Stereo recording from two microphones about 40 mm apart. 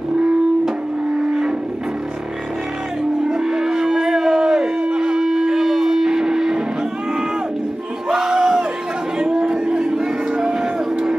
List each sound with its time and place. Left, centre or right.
3.0 s livestock: centre
8.1 s crowd: centre
9.2 s music: centre